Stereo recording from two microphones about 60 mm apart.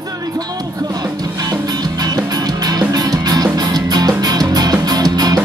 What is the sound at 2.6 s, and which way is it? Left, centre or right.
Music, right.